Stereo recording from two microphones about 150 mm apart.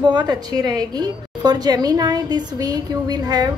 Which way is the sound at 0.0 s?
30° right (ahead or behind).